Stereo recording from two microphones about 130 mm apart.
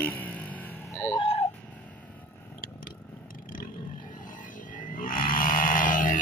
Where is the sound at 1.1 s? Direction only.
45° left (ahead or behind).